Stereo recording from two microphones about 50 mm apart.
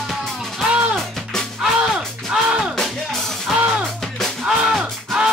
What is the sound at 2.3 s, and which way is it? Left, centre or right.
Music, centre.